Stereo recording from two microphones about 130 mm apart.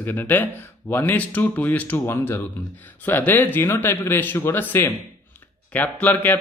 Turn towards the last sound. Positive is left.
turn(degrees=10)  # may be behind; listen again after turning